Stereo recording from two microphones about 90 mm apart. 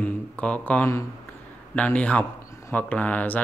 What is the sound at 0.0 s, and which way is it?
Speech, 15° left (ahead or behind).